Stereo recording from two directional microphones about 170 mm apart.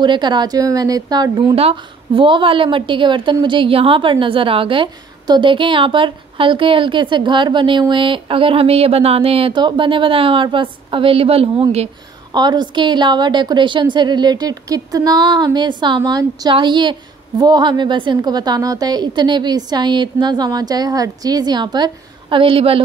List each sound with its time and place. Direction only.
0.0 s a woman's voice: 25° right (ahead or behind)
12.3 s a woman's voice: 25° right (ahead or behind)